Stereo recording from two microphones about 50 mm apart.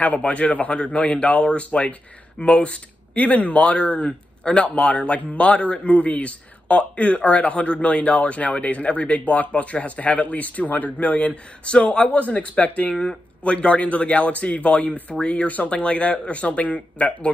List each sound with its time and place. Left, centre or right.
0.0 s speech: left
12.9 s speech: centre
13.4 s speech: left